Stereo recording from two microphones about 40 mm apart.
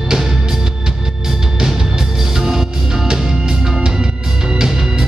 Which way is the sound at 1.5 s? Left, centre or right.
Centre.